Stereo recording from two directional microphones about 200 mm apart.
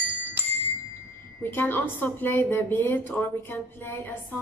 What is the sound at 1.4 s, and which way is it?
A woman's voice, 10° left (ahead or behind).